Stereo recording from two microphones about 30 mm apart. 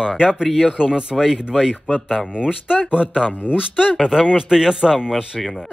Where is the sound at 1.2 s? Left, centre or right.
Centre.